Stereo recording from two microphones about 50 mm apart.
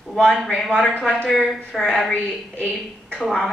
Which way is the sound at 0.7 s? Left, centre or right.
Centre.